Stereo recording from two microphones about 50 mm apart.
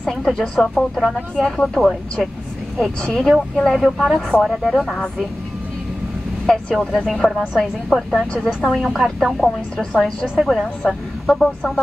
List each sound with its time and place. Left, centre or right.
0.0 s speech: centre
6.4 s speech: centre
8.1 s speech: left
8.7 s speech: centre
9.8 s speech: centre
10.2 s a woman's voice: centre
10.9 s speech: centre